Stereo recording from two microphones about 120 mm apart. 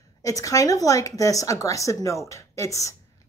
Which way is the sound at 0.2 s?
30° left (ahead or behind).